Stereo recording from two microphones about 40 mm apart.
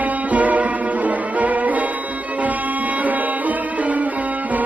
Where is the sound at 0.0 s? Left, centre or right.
Right.